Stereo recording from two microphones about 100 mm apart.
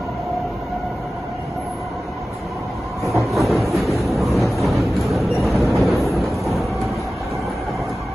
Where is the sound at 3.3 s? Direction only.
Centre (ahead or behind).